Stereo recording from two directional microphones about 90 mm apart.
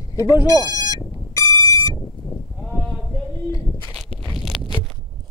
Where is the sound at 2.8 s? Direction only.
Centre (ahead or behind).